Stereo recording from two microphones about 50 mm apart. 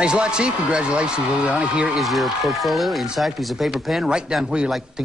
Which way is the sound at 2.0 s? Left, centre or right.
Centre.